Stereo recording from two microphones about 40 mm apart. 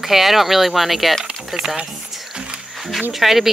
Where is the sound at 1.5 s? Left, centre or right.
Centre.